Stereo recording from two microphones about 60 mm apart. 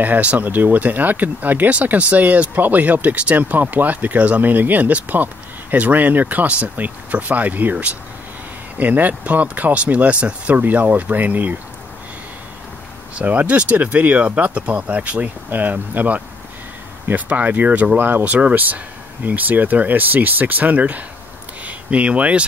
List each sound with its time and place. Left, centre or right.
0.0 s speech: right
13.1 s speech: right